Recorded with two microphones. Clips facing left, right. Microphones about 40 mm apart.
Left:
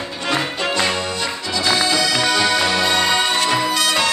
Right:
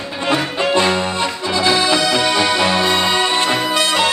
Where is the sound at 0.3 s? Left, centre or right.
Right.